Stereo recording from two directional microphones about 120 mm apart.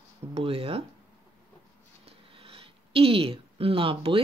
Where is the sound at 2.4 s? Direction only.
55° right (ahead or behind).